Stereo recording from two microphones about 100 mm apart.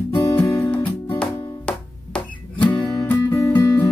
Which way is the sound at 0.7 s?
10° left (ahead or behind).